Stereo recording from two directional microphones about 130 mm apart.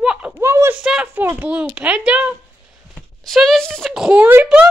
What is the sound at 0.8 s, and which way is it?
Speech, 5° right (ahead or behind).